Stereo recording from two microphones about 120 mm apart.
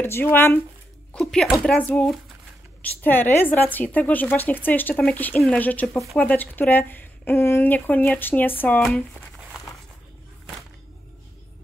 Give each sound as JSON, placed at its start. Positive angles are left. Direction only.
{"t": 0.0, "sound": "speech", "side_deg": 15}
{"t": 1.1, "sound": "a woman's voice", "side_deg": 0}